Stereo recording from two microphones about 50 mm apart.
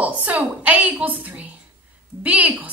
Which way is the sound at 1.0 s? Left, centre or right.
Right.